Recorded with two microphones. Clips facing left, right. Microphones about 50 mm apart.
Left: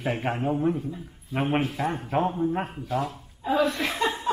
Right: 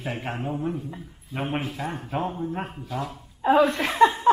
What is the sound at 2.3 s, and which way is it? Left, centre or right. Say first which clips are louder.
Speech: left 4 dB; centre.